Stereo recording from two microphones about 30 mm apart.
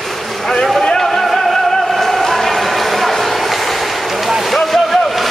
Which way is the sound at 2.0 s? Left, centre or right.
Centre.